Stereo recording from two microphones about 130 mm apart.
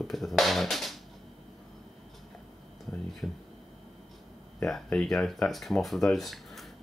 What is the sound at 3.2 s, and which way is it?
Speech, 5° left (ahead or behind).